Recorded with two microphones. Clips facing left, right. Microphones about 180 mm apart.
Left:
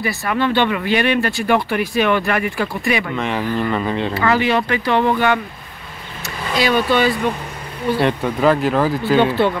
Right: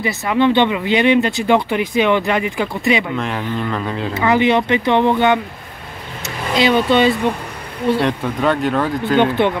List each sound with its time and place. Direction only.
0.0 s speech: 20° right (ahead or behind)
3.2 s speech: centre (ahead or behind)
4.1 s speech: 20° right (ahead or behind)
6.5 s speech: 25° right (ahead or behind)
8.0 s speech: centre (ahead or behind)